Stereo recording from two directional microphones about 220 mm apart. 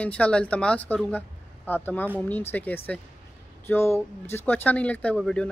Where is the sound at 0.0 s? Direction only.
5° left (ahead or behind).